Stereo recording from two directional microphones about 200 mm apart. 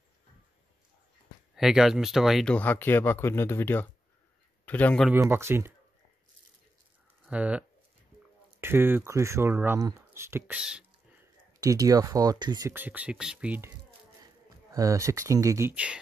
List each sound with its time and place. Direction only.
1.5 s speech: centre (ahead or behind)
5.1 s speech: 10° right (ahead or behind)
7.2 s speech: 5° right (ahead or behind)
11.6 s speech: 15° right (ahead or behind)
14.2 s speech: 15° right (ahead or behind)